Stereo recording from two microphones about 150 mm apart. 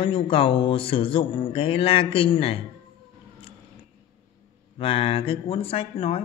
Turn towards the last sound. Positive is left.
turn(degrees=40)  # may be behind; listen again after turning